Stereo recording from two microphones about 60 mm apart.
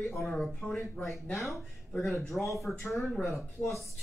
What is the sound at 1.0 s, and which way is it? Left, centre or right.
Speech, left.